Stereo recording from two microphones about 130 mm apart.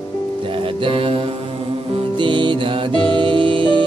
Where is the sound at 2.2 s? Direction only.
40° right (ahead or behind).